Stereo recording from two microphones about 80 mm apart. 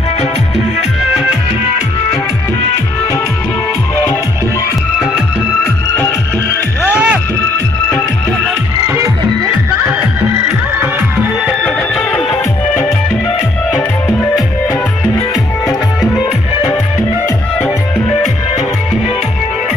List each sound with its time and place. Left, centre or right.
1.1 s music: centre
5.9 s music: left
6.9 s music: centre
10.8 s music: centre